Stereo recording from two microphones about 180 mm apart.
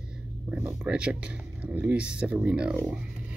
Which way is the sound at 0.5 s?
5° right (ahead or behind).